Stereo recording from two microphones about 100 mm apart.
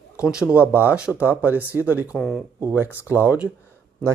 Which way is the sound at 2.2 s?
Centre (ahead or behind).